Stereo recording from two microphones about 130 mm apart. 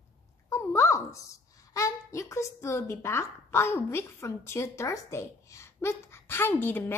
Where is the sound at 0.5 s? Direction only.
20° left (ahead or behind).